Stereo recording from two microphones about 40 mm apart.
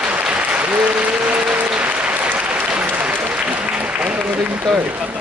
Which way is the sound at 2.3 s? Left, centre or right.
Right.